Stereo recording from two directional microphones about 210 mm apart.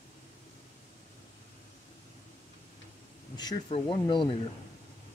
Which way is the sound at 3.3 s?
20° left (ahead or behind).